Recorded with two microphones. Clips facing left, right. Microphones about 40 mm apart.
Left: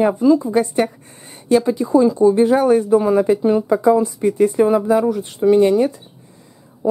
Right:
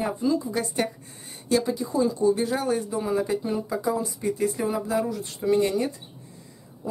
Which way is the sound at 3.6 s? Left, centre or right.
Left.